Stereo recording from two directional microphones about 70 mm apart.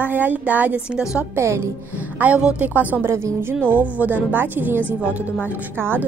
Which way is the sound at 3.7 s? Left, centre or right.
Right.